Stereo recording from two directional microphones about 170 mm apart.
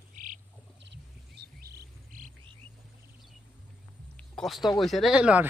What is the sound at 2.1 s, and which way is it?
Frog, 50° right (ahead or behind).